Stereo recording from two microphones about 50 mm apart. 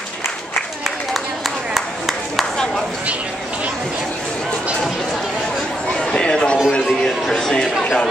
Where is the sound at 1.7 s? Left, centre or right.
Centre.